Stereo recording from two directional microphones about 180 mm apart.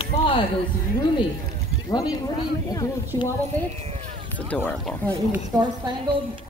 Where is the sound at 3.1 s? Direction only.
25° left (ahead or behind).